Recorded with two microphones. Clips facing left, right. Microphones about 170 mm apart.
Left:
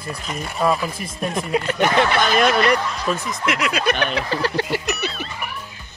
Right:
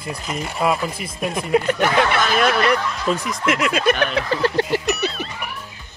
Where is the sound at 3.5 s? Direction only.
45° right (ahead or behind).